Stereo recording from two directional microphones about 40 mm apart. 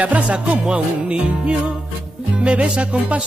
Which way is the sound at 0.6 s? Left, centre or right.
Right.